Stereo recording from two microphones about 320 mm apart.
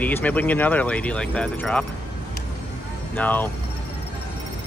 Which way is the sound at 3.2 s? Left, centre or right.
Centre.